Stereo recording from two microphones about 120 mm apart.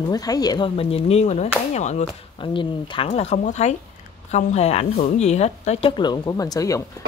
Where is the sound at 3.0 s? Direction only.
70° left (ahead or behind).